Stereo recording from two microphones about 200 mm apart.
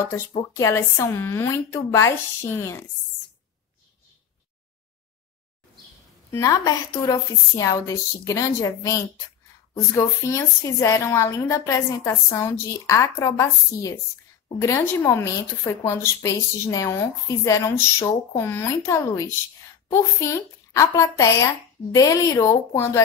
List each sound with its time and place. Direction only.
0.3 s speech: 20° left (ahead or behind)
6.3 s speech: 15° left (ahead or behind)